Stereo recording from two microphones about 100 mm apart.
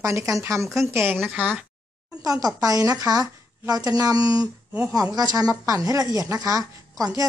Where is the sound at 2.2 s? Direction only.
40° right (ahead or behind).